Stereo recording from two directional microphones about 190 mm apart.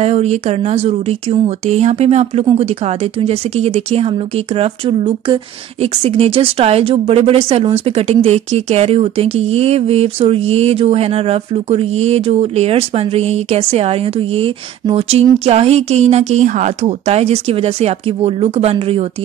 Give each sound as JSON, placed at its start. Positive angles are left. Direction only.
{"t": 0.0, "sound": "speech", "side_deg": -35}